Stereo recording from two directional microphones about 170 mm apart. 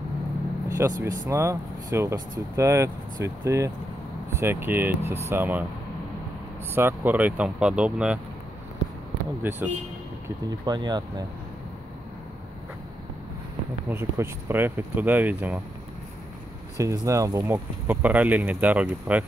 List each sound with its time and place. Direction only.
0.7 s speech: 20° right (ahead or behind)
6.7 s speech: 15° right (ahead or behind)
9.4 s speech: 10° right (ahead or behind)
10.2 s speech: 25° right (ahead or behind)
13.8 s speech: 15° right (ahead or behind)
16.7 s speech: 20° right (ahead or behind)